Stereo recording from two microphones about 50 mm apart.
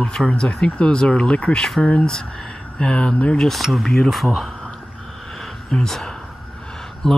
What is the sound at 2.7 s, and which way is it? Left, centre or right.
Speech, left.